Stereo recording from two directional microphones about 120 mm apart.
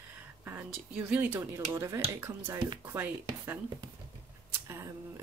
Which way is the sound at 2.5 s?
40° right (ahead or behind).